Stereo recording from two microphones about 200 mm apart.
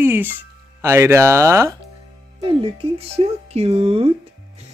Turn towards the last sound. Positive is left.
turn(degrees=-30)  # may be behind; listen again after turning